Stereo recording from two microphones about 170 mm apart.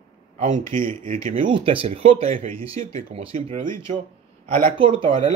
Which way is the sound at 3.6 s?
50° right (ahead or behind).